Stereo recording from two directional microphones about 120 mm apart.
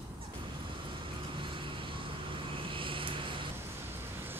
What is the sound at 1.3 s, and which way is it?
Vehicle, 45° right (ahead or behind).